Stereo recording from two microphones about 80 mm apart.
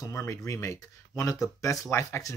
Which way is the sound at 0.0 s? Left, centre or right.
Left.